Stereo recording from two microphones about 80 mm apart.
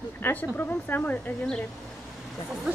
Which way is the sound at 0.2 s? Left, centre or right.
Left.